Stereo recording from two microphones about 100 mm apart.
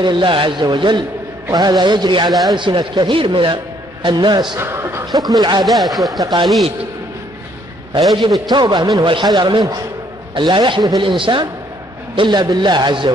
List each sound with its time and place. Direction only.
0.0 s a man's voice: 55° right (ahead or behind)
4.6 s a sound: 25° right (ahead or behind)
5.3 s a man's voice: 45° right (ahead or behind)
5.7 s speech: centre (ahead or behind)
8.5 s a man's voice: 45° right (ahead or behind)
12.2 s a man's voice: 45° right (ahead or behind)